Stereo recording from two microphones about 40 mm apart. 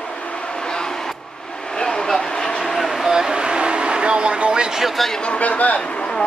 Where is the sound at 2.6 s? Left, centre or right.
Centre.